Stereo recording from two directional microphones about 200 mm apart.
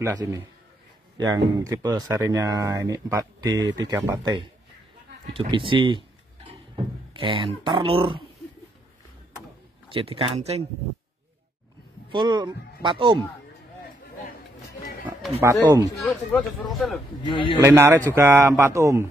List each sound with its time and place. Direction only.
0.0 s speech: 15° right (ahead or behind)
7.2 s speech: 25° right (ahead or behind)
9.8 s speech: 25° right (ahead or behind)
12.1 s speech: 20° right (ahead or behind)
15.4 s speech: 10° right (ahead or behind)
16.0 s speech: 5° left (ahead or behind)
17.2 s a man's voice: 25° left (ahead or behind)
17.6 s speech: 10° right (ahead or behind)